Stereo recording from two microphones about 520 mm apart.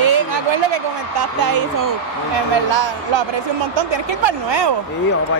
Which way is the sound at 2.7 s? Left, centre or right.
Right.